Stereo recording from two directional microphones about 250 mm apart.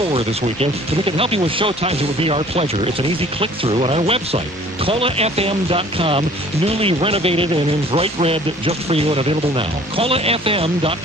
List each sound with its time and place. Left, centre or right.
0.1 s speech: right